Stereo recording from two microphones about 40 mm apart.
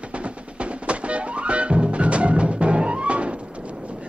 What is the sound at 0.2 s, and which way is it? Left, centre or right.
Music, right.